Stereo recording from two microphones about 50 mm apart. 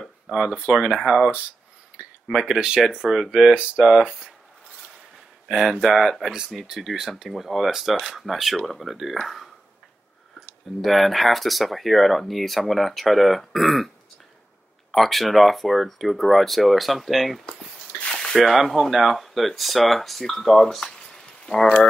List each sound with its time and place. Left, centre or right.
0.3 s speech: centre
5.5 s speech: centre
10.8 s speech: centre
14.9 s speech: centre
17.5 s a sound: centre
18.3 s speech: centre